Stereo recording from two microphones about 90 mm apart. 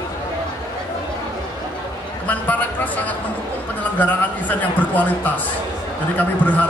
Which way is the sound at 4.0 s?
20° left (ahead or behind).